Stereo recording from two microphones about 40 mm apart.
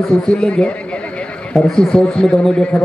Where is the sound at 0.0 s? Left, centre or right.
Centre.